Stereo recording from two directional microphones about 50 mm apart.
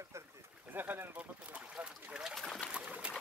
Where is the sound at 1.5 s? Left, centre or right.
Right.